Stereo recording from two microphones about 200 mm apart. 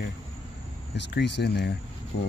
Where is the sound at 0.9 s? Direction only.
60° left (ahead or behind).